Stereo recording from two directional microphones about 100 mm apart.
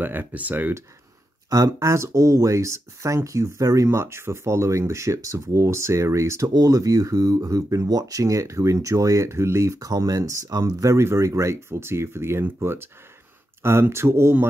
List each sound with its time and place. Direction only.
0.0 s speech: 20° right (ahead or behind)
1.5 s speech: 35° right (ahead or behind)